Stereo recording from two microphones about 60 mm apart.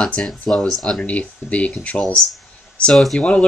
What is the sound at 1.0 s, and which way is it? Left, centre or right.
Speech, left.